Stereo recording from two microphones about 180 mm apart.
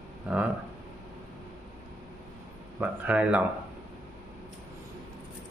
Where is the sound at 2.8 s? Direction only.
10° right (ahead or behind).